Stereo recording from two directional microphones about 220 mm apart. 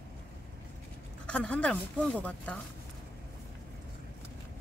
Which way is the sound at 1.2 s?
5° left (ahead or behind).